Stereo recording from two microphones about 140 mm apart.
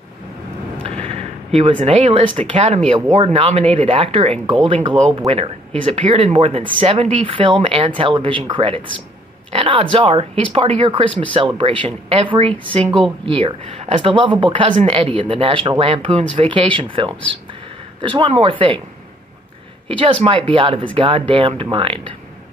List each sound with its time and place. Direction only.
1.0 s speech: 45° right (ahead or behind)
20.0 s speech: 40° right (ahead or behind)